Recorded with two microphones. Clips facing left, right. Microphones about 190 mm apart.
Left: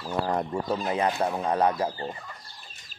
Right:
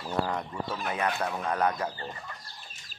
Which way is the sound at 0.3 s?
40° left (ahead or behind).